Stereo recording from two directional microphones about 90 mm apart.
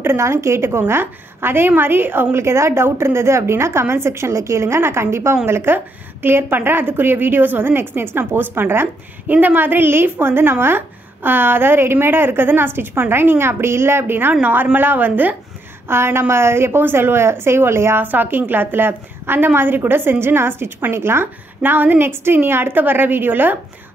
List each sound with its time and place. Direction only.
0.0 s a woman's voice: 30° right (ahead or behind)